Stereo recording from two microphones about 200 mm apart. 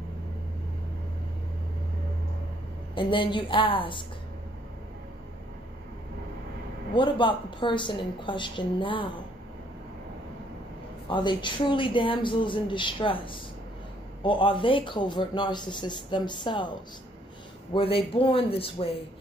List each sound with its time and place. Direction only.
2.9 s speech: 25° left (ahead or behind)
7.0 s speech: 25° left (ahead or behind)
11.1 s speech: 25° left (ahead or behind)
17.7 s speech: 25° left (ahead or behind)